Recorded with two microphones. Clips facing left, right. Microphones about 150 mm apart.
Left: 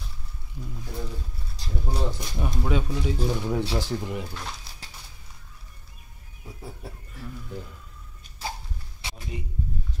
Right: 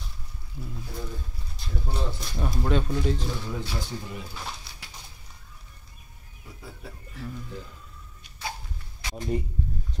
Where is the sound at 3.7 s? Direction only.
90° left.